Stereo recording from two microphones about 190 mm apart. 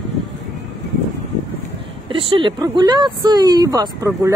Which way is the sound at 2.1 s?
25° right (ahead or behind).